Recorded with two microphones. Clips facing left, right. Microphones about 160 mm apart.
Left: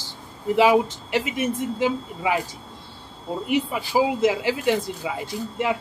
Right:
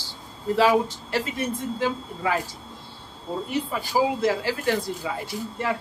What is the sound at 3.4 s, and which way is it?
Speech, 15° left (ahead or behind).